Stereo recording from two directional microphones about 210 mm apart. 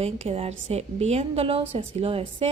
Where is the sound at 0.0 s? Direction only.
30° right (ahead or behind).